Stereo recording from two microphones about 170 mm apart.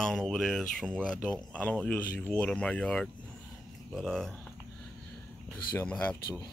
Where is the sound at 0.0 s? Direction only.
5° left (ahead or behind).